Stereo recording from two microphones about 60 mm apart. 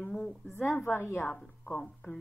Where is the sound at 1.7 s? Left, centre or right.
Centre.